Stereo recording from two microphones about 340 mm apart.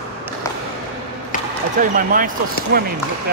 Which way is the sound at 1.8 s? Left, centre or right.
Right.